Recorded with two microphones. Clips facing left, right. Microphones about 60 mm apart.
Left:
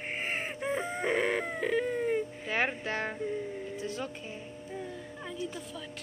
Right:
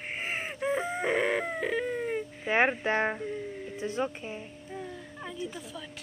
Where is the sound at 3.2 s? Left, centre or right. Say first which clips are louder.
Left 1 dB; centre.